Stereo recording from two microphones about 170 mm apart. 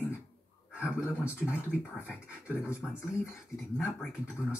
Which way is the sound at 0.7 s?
5° right (ahead or behind).